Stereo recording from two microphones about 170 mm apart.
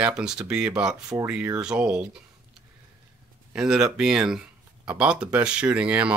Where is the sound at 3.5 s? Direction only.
5° right (ahead or behind).